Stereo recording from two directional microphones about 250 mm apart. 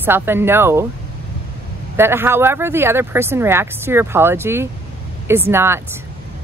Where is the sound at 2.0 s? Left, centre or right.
Centre.